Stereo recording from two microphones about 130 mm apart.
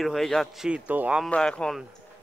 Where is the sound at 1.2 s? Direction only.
10° left (ahead or behind).